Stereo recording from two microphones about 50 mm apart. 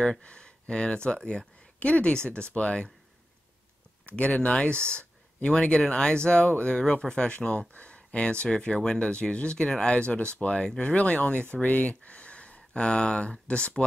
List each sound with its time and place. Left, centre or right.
0.2 s speech: centre
4.0 s speech: left